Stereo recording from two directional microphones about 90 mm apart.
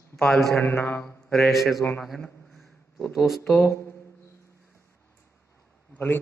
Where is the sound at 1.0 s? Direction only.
5° left (ahead or behind).